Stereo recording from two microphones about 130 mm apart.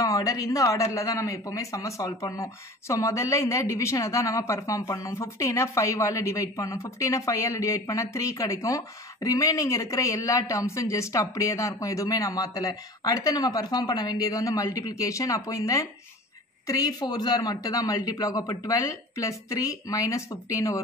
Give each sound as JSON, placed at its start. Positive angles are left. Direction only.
{"t": 0.0, "sound": "a man's voice", "side_deg": 25}